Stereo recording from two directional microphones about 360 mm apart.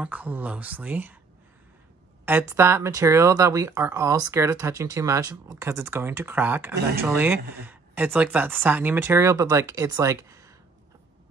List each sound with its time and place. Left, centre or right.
0.0 s speech: centre
2.2 s speech: centre